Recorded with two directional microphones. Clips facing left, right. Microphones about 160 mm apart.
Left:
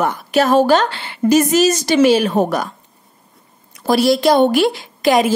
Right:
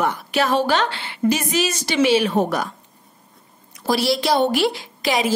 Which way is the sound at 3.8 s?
50° left (ahead or behind).